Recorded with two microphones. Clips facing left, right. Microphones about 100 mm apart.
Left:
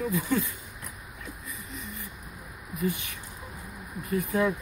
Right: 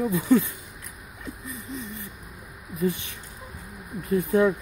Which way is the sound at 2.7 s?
25° right (ahead or behind).